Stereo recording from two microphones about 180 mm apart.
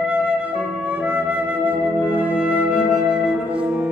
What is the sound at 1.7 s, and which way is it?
Flute, 10° right (ahead or behind).